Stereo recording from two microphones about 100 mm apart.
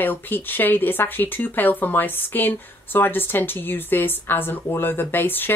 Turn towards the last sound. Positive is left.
turn(degrees=20)  # may be behind; listen again after turning